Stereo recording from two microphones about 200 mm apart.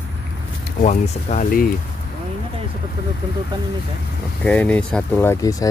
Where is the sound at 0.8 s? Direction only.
35° left (ahead or behind).